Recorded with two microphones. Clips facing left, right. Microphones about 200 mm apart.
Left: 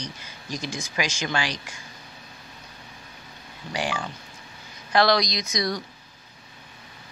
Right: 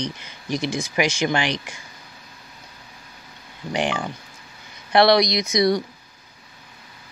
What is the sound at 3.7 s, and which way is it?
Speech, 20° right (ahead or behind).